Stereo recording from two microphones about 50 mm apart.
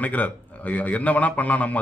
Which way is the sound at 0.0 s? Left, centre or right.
Left.